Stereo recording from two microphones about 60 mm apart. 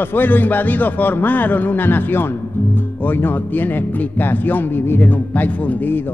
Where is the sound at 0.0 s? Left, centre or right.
Left.